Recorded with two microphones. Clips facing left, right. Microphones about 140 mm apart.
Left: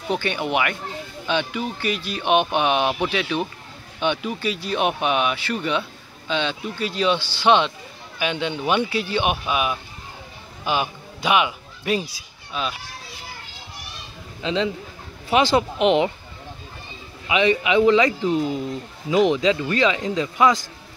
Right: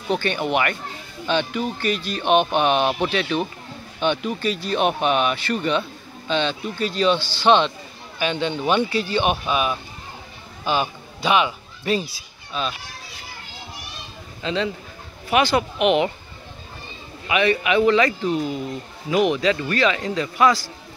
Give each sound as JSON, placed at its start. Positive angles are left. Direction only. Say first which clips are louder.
{"t": 0.1, "sound": "speech", "louder": "right 1 dB", "side_deg": 10}
{"t": 14.4, "sound": "a man's voice", "louder": "left 1 dB", "side_deg": 20}
{"t": 17.3, "sound": "a man's voice", "louder": "left 1 dB", "side_deg": 20}